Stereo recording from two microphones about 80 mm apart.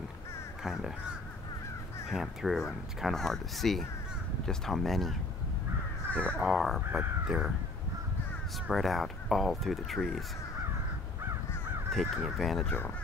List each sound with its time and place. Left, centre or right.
2.0 s speech: centre
6.1 s speech: centre
6.4 s speech: centre
7.2 s crow: centre
8.6 s speech: centre
11.9 s speech: centre
12.6 s speech: left